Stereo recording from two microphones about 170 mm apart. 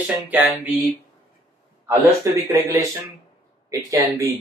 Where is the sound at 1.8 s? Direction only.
20° right (ahead or behind).